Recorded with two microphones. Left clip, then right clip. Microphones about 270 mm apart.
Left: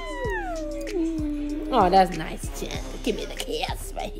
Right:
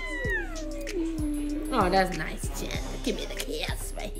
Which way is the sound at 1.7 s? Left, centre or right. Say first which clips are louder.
Left 6 dB; centre.